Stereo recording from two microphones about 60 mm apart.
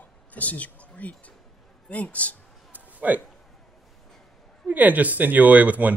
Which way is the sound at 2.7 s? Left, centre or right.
Right.